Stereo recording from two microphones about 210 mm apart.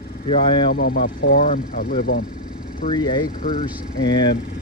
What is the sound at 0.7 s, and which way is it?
Speech, 45° left (ahead or behind).